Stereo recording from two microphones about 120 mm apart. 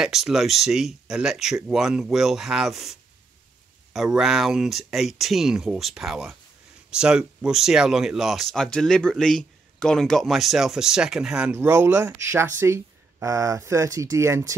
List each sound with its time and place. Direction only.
0.0 s speech: 5° right (ahead or behind)
11.5 s speech: 20° right (ahead or behind)